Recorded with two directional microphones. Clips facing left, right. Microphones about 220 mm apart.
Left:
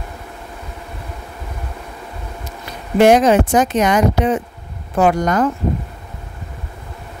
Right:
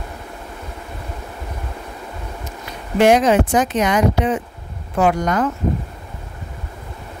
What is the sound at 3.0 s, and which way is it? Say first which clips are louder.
Speech: left 2 dB; 40° left (ahead or behind).